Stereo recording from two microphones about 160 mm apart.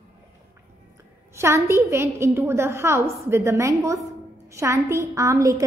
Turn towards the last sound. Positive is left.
turn(degrees=-20)  # may be behind; listen again after turning